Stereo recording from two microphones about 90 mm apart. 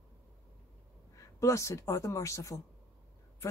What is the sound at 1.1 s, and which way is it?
Speech, 35° left (ahead or behind).